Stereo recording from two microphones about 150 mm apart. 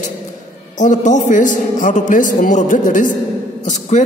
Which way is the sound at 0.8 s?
55° left (ahead or behind).